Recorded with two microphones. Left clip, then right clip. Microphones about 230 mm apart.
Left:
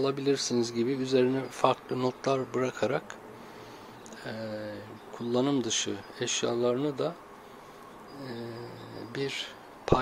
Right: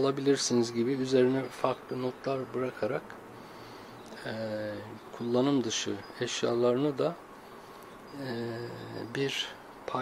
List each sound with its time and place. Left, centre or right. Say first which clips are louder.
0.0 s speech: right 1 dB; centre
1.6 s speech: left 5 dB; centre
4.2 s speech: right 2 dB; centre
8.2 s speech: right 4 dB; centre
9.9 s speech: left 8 dB; centre